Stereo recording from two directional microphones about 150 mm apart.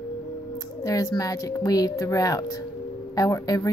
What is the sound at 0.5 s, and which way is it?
A woman's voice, 25° left (ahead or behind).